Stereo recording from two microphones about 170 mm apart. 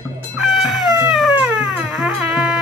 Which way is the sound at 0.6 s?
5° right (ahead or behind).